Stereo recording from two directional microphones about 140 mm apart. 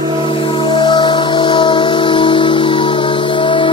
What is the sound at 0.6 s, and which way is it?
Music, 35° left (ahead or behind).